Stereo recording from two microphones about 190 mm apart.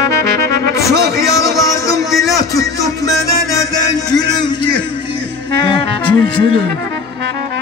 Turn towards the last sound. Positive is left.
turn(degrees=25)  # may be behind; listen again after turning